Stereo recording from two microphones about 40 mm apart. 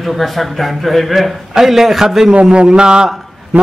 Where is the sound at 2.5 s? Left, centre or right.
Right.